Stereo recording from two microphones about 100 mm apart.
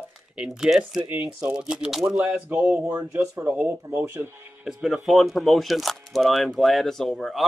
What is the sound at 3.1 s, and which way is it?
Speech, 25° right (ahead or behind).